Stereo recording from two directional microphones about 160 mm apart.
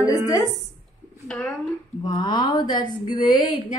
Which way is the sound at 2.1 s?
30° left (ahead or behind).